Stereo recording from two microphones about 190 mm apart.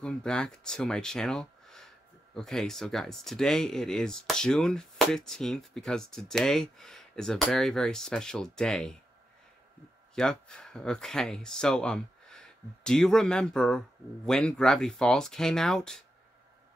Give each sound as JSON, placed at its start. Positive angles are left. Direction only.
{"t": 0.0, "sound": "speech", "side_deg": 5}
{"t": 10.1, "sound": "speech", "side_deg": 5}